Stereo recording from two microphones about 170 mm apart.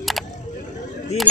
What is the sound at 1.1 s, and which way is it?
Speech, 40° left (ahead or behind).